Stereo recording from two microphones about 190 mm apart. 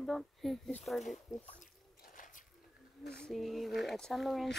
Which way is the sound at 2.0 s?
45° left (ahead or behind).